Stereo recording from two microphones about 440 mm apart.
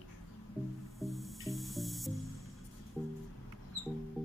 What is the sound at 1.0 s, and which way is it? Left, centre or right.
Music, centre.